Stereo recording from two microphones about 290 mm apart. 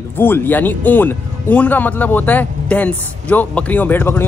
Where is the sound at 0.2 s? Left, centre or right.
Centre.